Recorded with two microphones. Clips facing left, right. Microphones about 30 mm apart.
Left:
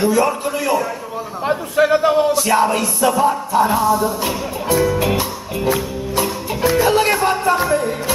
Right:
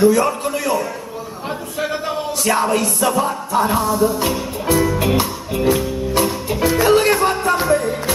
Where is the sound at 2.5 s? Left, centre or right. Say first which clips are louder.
Left 1 dB; centre.